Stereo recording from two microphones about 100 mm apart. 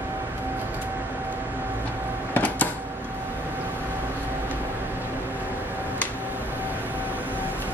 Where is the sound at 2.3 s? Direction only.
15° left (ahead or behind).